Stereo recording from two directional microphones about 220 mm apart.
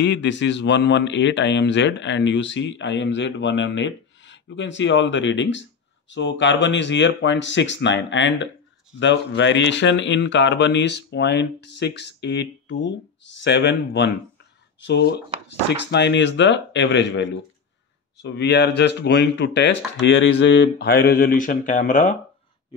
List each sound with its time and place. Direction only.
0.0 s a man's voice: 55° left (ahead or behind); by 22.1 s 35° left (ahead or behind)